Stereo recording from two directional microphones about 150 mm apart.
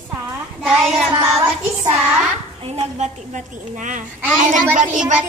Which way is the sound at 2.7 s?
50° right (ahead or behind).